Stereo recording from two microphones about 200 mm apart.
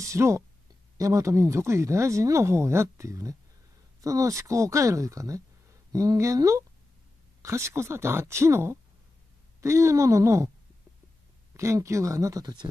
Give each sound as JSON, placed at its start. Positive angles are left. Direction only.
{"t": 0.0, "sound": "speech", "side_deg": -15}
{"t": 11.5, "sound": "speech", "side_deg": -15}